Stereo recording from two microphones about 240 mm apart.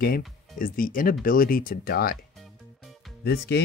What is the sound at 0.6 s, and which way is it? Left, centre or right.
Speech, left.